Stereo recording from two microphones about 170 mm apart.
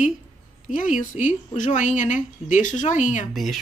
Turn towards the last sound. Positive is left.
turn(degrees=0)  # may be behind; listen again after turning